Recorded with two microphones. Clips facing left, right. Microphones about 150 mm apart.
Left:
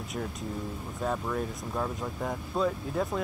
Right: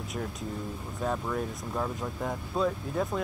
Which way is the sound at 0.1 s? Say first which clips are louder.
Left 1 dB; centre (ahead or behind).